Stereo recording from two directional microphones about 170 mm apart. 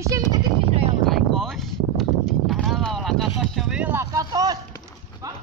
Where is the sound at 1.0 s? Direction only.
Centre (ahead or behind); by 4.6 s 25° right (ahead or behind).